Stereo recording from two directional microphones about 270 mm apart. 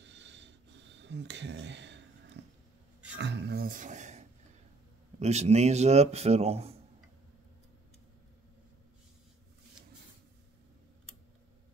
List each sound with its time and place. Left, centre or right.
0.0 s wheeze: right
3.2 s a sound: right
5.2 s speech: right